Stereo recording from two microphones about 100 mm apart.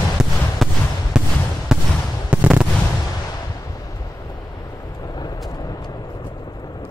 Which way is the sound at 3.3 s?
35° left (ahead or behind).